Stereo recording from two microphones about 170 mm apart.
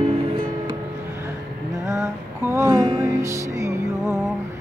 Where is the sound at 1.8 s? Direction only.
20° right (ahead or behind).